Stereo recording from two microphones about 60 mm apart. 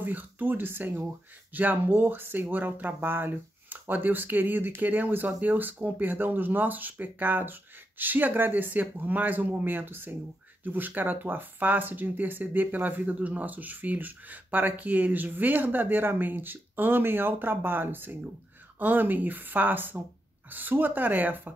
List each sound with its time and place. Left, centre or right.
0.0 s speech: right